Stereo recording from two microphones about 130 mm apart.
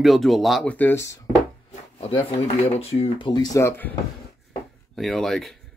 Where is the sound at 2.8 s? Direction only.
45° left (ahead or behind); by 3.7 s 30° left (ahead or behind).